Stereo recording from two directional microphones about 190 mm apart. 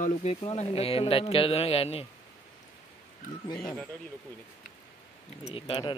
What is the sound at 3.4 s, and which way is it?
Speech, 20° left (ahead or behind).